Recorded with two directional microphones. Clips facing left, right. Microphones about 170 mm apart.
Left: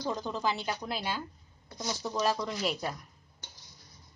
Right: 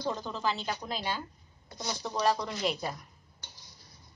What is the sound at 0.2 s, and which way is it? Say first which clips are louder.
A woman's voice: left 1 dB; 15° left (ahead or behind).